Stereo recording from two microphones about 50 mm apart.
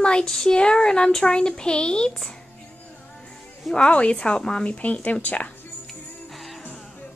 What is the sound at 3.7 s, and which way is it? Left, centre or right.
Speech, centre.